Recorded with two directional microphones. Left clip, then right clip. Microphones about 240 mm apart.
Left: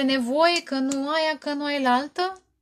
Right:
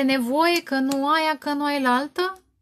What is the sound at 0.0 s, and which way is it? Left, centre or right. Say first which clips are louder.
Speech: even; right.